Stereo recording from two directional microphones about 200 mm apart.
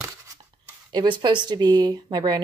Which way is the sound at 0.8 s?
25° right (ahead or behind).